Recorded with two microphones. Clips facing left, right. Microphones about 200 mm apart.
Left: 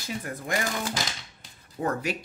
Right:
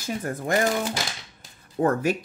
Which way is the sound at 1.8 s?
50° right (ahead or behind).